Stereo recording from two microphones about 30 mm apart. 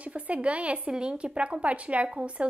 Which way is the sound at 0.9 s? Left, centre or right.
Right.